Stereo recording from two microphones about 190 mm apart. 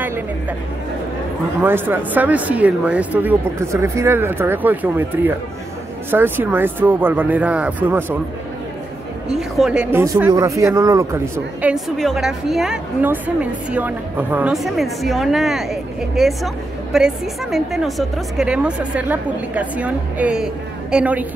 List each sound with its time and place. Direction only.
1.6 s speech: 10° right (ahead or behind)
9.6 s speech: 5° right (ahead or behind)
11.7 s a woman's voice: centre (ahead or behind)